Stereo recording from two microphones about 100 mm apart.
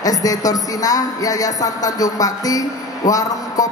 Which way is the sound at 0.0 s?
35° left (ahead or behind).